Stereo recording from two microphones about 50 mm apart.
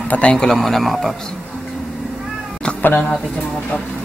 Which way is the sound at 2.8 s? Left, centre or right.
Left.